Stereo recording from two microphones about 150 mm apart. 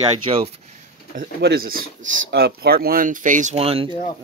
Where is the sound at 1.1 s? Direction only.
80° right; by 3.5 s 60° right (ahead or behind).